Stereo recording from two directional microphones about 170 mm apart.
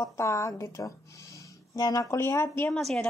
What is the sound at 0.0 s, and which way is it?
Speech, 20° left (ahead or behind).